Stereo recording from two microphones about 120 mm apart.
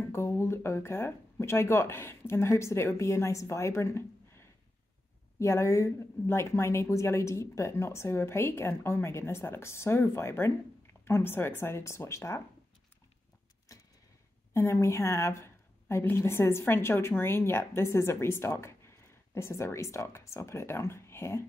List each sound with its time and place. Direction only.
0.0 s speech: 20° left (ahead or behind)
13.7 s a sound: 25° left (ahead or behind)
14.5 s speech: 25° left (ahead or behind)